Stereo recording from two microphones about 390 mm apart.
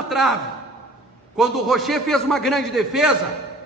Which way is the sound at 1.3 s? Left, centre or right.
Centre.